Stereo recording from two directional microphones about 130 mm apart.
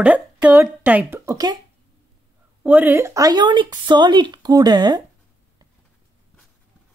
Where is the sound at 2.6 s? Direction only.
15° right (ahead or behind); by 5.0 s 35° right (ahead or behind).